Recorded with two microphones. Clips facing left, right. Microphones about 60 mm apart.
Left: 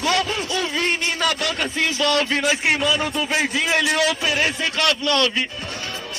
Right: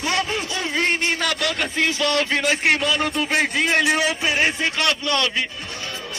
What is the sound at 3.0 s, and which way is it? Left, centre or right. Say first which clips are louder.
Speech: right 1 dB; right.